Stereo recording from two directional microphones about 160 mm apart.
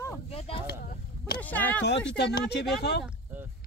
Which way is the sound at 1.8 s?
90° left.